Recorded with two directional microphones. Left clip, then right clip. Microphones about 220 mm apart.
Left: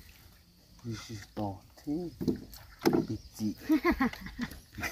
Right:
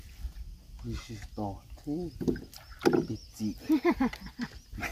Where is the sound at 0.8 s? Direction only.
5° left (ahead or behind).